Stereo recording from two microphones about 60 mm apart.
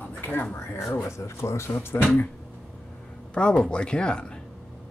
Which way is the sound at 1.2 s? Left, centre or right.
Left.